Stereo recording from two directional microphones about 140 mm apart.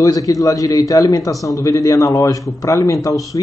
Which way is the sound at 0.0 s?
25° left (ahead or behind).